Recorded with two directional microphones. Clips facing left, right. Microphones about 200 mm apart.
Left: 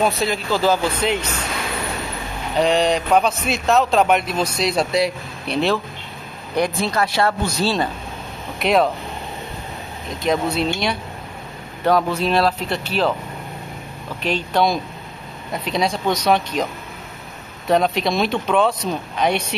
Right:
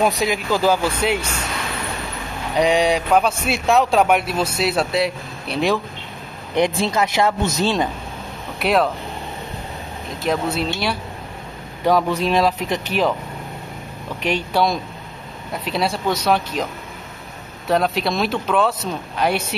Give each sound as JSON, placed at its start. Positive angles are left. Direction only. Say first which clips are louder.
{"t": 0.2, "sound": "a man's voice", "louder": "right 1 dB", "side_deg": -15}
{"t": 2.5, "sound": "a man's voice", "louder": "even", "side_deg": -15}
{"t": 6.5, "sound": "speech", "louder": "right 2 dB", "side_deg": -20}
{"t": 8.5, "sound": "speech", "louder": "left 1 dB", "side_deg": 0}
{"t": 10.2, "sound": "speech", "louder": "left 2 dB", "side_deg": -5}
{"t": 11.8, "sound": "a man's voice", "louder": "even", "side_deg": -15}
{"t": 14.2, "sound": "a man's voice", "louder": "even", "side_deg": -15}
{"t": 17.6, "sound": "speech", "louder": "left 1 dB", "side_deg": 0}